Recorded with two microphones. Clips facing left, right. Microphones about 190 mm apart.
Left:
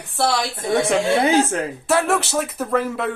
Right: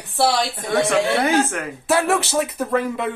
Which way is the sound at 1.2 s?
25° left (ahead or behind).